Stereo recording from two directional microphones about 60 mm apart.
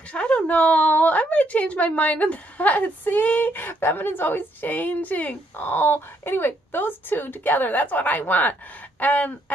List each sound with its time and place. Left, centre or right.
0.1 s a woman's voice: centre